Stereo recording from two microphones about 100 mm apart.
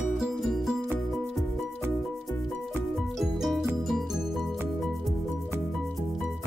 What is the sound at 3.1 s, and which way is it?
Music, centre (ahead or behind).